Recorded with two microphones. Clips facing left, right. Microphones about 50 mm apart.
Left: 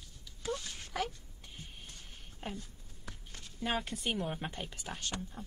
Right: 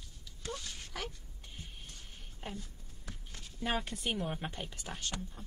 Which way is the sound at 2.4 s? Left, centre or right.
Centre.